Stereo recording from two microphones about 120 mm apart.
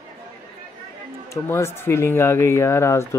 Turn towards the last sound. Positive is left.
turn(degrees=25)  # may be behind; listen again after turning